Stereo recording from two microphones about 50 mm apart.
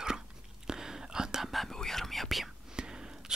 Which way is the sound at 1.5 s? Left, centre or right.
Centre.